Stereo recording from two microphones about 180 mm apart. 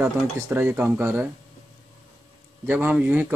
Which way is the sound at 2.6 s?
10° right (ahead or behind).